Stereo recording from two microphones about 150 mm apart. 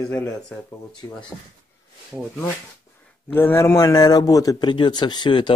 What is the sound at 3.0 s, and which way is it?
A man's voice, 10° left (ahead or behind).